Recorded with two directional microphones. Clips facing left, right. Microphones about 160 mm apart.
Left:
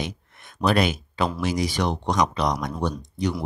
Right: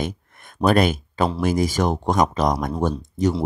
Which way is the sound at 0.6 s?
50° right (ahead or behind).